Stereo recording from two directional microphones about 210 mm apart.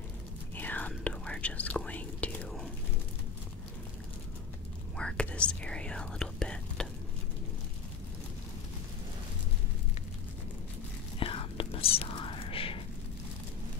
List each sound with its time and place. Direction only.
0.6 s whispering: 10° left (ahead or behind)
4.9 s whispering: 5° left (ahead or behind)
11.1 s whispering: 25° left (ahead or behind)